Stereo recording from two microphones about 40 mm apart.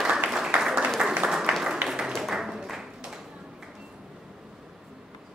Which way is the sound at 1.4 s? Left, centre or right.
Centre.